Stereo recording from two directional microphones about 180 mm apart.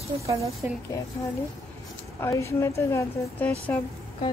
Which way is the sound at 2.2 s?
15° left (ahead or behind).